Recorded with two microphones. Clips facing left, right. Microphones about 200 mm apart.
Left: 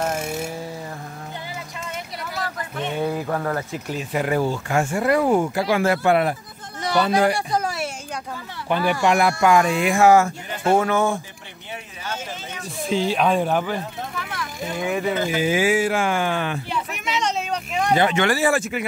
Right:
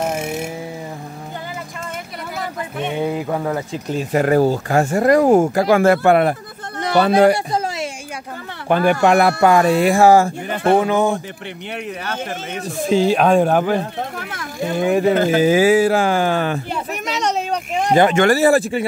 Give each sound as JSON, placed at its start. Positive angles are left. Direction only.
{"t": 0.0, "sound": "a sound", "side_deg": -10}
{"t": 2.8, "sound": "speech", "side_deg": -15}
{"t": 4.1, "sound": "speech", "side_deg": -45}
{"t": 8.6, "sound": "speech", "side_deg": -50}
{"t": 9.4, "sound": "speech", "side_deg": -35}
{"t": 10.5, "sound": "speech", "side_deg": -60}
{"t": 10.8, "sound": "speech", "side_deg": -15}
{"t": 12.8, "sound": "speech", "side_deg": -45}